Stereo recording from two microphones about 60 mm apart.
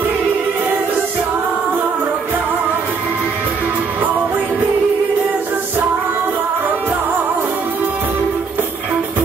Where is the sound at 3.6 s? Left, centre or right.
Right.